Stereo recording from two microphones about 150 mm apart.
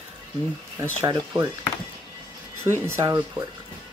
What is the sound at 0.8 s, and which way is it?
Speech, 20° right (ahead or behind).